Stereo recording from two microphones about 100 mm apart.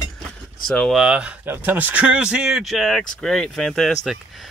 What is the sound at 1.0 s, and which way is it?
Speech, 10° right (ahead or behind).